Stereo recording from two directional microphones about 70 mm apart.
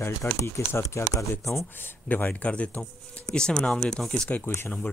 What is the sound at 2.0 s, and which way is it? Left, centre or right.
Speech, left.